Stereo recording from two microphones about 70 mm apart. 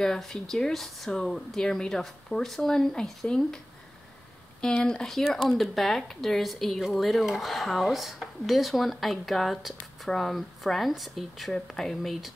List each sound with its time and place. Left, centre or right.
0.0 s a woman's voice: centre
4.6 s a woman's voice: centre